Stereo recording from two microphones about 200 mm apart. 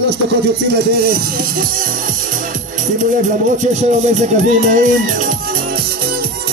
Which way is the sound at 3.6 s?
35° right (ahead or behind).